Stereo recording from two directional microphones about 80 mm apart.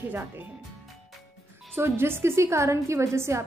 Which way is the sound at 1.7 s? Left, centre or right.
Right.